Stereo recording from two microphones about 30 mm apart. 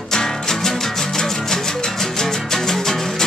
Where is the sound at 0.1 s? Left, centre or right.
Centre.